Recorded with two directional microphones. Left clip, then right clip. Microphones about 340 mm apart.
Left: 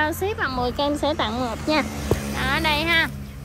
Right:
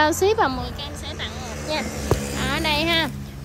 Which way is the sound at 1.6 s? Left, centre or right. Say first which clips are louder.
Left 1 dB; right.